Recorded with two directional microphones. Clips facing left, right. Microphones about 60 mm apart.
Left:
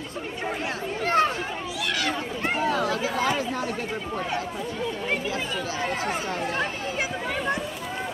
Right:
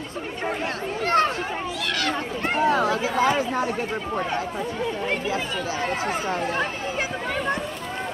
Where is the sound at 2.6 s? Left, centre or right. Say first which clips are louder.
Right 5 dB; right.